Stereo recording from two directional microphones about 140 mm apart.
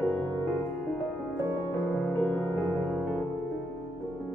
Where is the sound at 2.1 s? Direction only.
10° left (ahead or behind).